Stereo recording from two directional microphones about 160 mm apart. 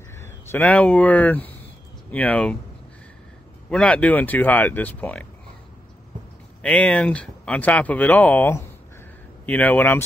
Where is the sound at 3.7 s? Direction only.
5° left (ahead or behind).